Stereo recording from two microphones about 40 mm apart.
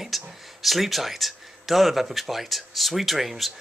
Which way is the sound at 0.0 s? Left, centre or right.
Centre.